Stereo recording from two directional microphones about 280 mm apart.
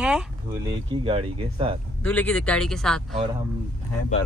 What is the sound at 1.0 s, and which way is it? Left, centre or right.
Speech, centre.